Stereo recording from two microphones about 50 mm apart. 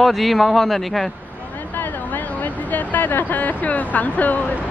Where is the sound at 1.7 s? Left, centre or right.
Left.